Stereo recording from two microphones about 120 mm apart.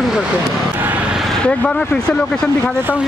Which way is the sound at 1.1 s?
5° left (ahead or behind).